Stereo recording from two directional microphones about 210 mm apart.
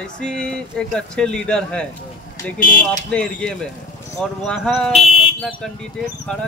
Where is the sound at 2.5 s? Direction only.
40° left (ahead or behind).